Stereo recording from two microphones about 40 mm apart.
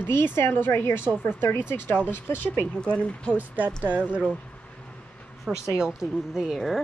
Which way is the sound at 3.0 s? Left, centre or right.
Left.